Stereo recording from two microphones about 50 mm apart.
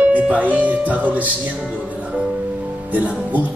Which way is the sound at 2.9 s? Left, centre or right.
Right.